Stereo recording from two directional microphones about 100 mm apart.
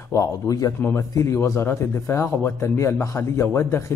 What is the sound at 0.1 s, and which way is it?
Speech, 35° left (ahead or behind).